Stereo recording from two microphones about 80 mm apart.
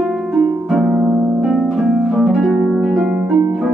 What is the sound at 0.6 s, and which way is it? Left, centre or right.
Harp, centre.